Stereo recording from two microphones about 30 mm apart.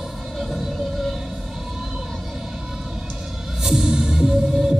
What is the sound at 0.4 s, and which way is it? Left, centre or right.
Music, centre.